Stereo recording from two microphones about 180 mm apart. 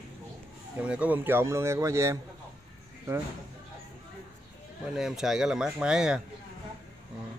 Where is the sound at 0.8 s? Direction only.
5° right (ahead or behind).